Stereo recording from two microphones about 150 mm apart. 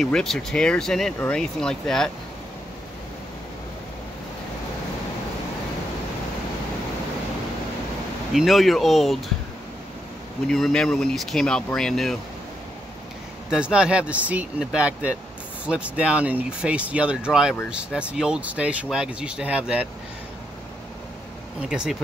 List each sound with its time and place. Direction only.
0.0 s speech: 5° left (ahead or behind)
8.3 s speech: centre (ahead or behind)
10.4 s speech: centre (ahead or behind)
13.5 s speech: 5° right (ahead or behind)
21.6 s speech: 5° right (ahead or behind)